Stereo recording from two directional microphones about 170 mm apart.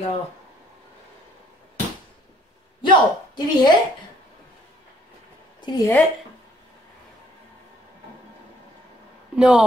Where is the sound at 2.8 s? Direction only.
25° left (ahead or behind).